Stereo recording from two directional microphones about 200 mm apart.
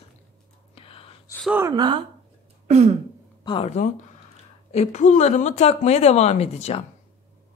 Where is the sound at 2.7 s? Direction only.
35° right (ahead or behind).